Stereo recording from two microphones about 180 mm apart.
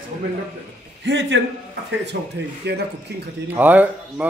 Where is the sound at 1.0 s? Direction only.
90° right.